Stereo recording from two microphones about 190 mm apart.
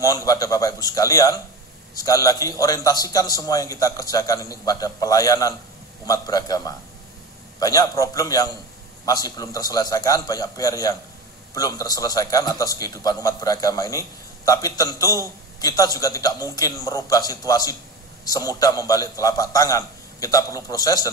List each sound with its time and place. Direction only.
0.0 s a man's voice: 20° left (ahead or behind)